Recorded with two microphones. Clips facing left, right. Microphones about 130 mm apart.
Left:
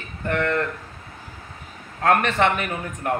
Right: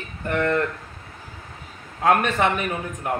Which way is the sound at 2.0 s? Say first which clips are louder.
Even; 10° right (ahead or behind).